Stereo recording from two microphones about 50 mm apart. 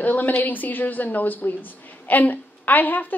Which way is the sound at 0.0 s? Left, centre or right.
Left.